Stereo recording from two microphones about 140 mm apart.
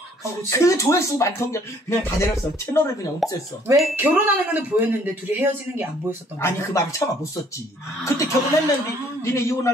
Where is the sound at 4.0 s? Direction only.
15° right (ahead or behind).